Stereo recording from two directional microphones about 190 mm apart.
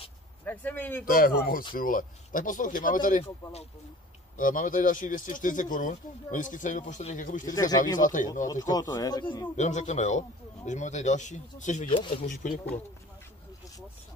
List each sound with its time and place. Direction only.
0.5 s speech: 10° left (ahead or behind)
1.0 s speech: 50° left (ahead or behind)
8.5 s speech: 20° left (ahead or behind)
9.6 s a man's voice: 40° left (ahead or behind)
11.9 s speech: 25° left (ahead or behind)
12.4 s a man's voice: 40° left (ahead or behind)